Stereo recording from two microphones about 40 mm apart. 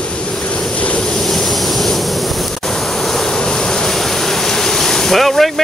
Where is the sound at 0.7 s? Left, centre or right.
Left.